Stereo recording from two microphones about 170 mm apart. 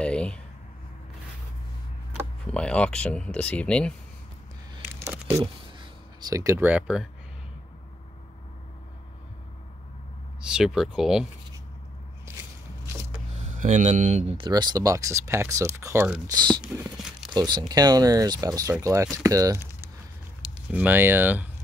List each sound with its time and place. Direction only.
0.0 s a sound: 5° left (ahead or behind)
2.5 s speech: 5° left (ahead or behind)
4.9 s a sound: 15° right (ahead or behind)
5.4 s speech: 25° right (ahead or behind); by 7.1 s 5° right (ahead or behind)
10.4 s speech: 5° right (ahead or behind)
13.4 s speech: 45° right (ahead or behind); by 16.3 s 15° right (ahead or behind)
16.3 s speech: 25° right (ahead or behind)
16.6 s a sound: 5° right (ahead or behind)
17.3 s speech: 25° right (ahead or behind)